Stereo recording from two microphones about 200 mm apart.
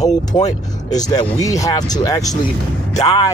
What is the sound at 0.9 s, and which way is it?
Speech, 20° left (ahead or behind).